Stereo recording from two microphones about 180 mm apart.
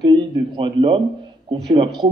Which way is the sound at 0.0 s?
30° right (ahead or behind).